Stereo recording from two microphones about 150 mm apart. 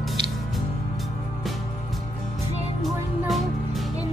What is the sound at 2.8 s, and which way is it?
Music, centre (ahead or behind).